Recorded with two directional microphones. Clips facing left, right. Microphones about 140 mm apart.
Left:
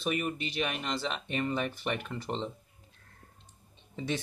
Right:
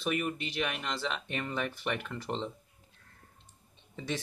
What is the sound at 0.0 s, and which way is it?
Speech, 20° left (ahead or behind).